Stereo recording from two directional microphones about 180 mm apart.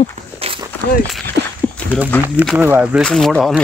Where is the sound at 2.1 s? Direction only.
10° left (ahead or behind).